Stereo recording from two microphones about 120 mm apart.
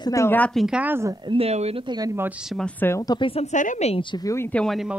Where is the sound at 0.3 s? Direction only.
10° left (ahead or behind).